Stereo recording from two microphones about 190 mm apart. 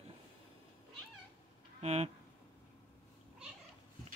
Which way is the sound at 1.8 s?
35° right (ahead or behind).